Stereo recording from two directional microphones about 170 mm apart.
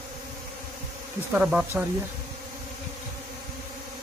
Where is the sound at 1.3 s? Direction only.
5° right (ahead or behind).